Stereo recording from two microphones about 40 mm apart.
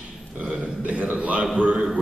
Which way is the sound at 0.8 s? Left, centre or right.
Right.